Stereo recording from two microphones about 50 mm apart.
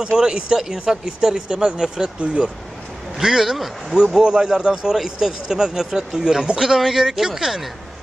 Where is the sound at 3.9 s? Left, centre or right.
Centre.